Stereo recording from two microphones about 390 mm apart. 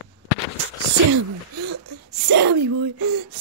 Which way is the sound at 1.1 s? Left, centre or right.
Right.